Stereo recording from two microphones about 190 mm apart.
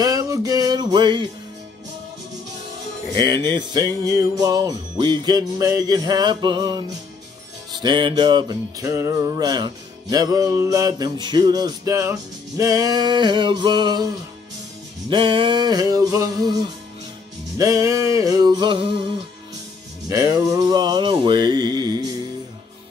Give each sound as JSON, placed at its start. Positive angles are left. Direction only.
{"t": 0.0, "sound": "music", "side_deg": -20}
{"t": 3.2, "sound": "music", "side_deg": -20}
{"t": 15.0, "sound": "music", "side_deg": -25}
{"t": 17.6, "sound": "music", "side_deg": -15}
{"t": 20.1, "sound": "music", "side_deg": -15}